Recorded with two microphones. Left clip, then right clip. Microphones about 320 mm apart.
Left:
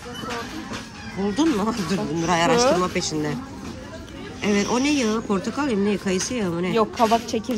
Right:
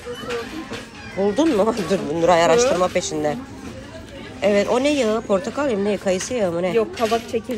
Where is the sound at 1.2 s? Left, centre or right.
Centre.